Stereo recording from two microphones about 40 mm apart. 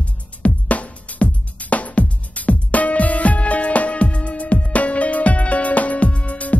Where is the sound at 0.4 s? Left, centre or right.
Left.